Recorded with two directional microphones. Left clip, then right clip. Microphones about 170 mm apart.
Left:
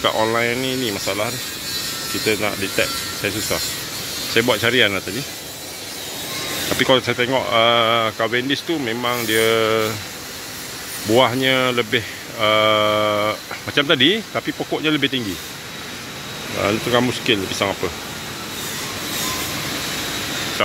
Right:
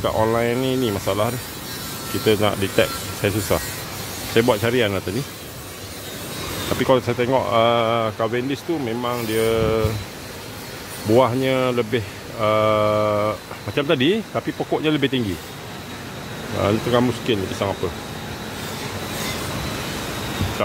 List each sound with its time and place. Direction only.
0.0 s speech: 5° right (ahead or behind)
6.8 s speech: 10° right (ahead or behind)
11.1 s speech: 10° right (ahead or behind)
16.6 s speech: 5° right (ahead or behind)